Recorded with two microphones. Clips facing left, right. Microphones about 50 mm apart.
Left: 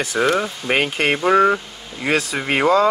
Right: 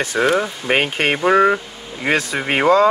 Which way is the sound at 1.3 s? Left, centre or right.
Centre.